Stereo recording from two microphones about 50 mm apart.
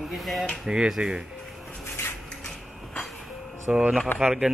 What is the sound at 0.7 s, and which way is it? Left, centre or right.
Speech, centre.